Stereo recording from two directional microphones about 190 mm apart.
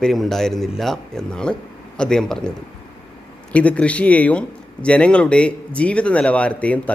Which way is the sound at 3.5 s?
5° left (ahead or behind).